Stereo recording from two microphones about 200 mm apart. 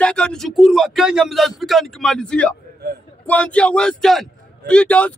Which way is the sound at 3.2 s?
5° left (ahead or behind).